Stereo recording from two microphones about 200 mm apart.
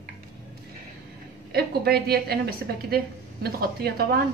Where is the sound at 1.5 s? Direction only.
50° right (ahead or behind).